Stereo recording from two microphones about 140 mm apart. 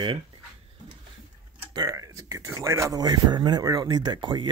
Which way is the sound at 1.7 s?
25° right (ahead or behind).